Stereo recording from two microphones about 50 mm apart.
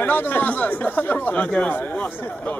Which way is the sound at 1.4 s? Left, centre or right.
Left.